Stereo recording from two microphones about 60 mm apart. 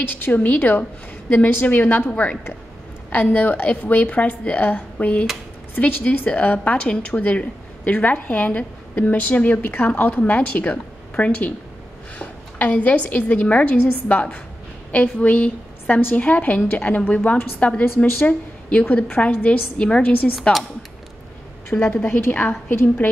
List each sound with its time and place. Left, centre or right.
0.1 s a woman's voice: left
21.6 s a woman's voice: left